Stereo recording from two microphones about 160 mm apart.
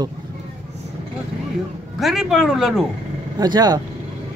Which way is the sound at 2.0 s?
Centre (ahead or behind).